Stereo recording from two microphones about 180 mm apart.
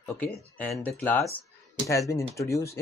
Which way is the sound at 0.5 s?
5° left (ahead or behind).